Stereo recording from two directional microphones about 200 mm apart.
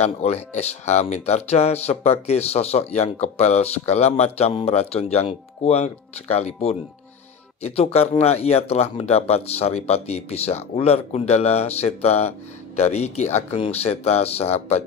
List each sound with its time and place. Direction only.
0.0 s speech: 30° left (ahead or behind)